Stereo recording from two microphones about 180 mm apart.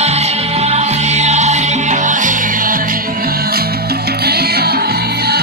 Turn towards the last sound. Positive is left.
turn(degrees=-65)  # may be behind; listen again after turning